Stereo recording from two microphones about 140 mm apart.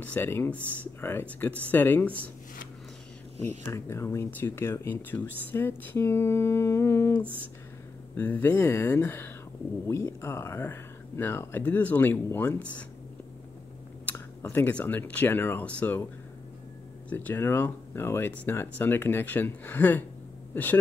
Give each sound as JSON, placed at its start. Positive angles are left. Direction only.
{"t": 0.0, "sound": "speech", "side_deg": 15}
{"t": 3.7, "sound": "speech", "side_deg": 20}
{"t": 14.0, "sound": "speech", "side_deg": 15}
{"t": 17.1, "sound": "speech", "side_deg": 15}